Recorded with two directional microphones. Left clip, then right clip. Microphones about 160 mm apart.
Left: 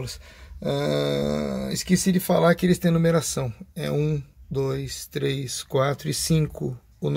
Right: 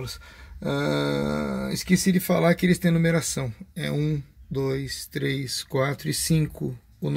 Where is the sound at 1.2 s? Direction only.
15° left (ahead or behind).